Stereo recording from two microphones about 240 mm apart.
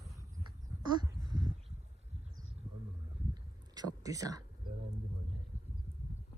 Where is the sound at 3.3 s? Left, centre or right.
Centre.